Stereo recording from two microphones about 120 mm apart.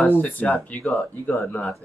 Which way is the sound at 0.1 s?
15° left (ahead or behind).